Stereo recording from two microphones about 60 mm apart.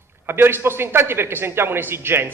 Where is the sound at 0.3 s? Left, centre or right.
Right.